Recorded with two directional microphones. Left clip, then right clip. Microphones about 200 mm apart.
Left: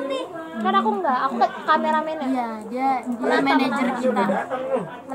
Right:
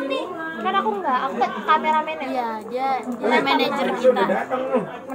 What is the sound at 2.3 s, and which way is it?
A woman's voice, 10° left (ahead or behind).